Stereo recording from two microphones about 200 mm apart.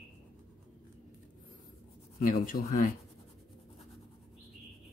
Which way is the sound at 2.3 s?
40° left (ahead or behind).